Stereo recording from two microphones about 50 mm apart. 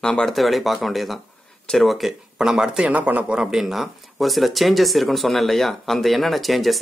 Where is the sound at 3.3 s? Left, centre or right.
Centre.